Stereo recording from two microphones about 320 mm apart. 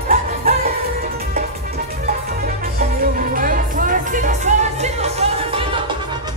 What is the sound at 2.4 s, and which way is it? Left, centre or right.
Music, right.